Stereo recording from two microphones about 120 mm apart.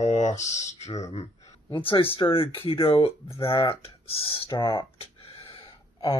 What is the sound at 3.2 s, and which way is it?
Speech, 25° left (ahead or behind).